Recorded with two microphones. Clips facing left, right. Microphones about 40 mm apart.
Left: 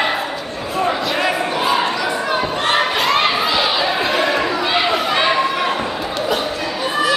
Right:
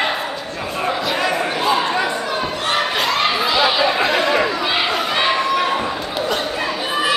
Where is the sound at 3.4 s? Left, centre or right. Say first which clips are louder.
Right 1 dB; centre.